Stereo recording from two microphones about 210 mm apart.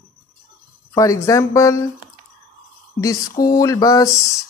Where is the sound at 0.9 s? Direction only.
15° left (ahead or behind).